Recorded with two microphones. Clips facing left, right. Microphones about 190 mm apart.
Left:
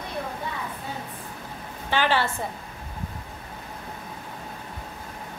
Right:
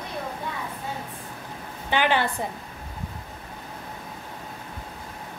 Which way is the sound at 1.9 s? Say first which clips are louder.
Right 1 dB; 15° right (ahead or behind).